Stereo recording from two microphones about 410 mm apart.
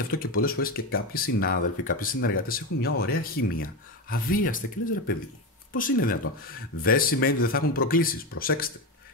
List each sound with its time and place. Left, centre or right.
0.1 s speech: left